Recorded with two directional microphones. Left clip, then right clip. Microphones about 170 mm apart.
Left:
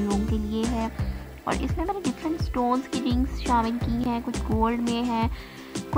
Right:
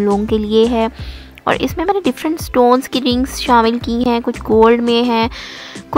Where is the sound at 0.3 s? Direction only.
45° right (ahead or behind).